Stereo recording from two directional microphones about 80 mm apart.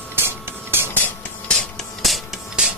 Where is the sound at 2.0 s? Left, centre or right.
Centre.